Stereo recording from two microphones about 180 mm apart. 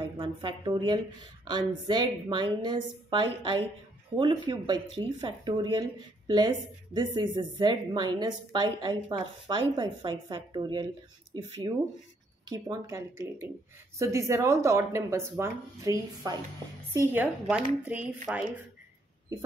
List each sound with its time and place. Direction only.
0.0 s a woman's voice: 30° right (ahead or behind)
12.4 s speech: 20° right (ahead or behind)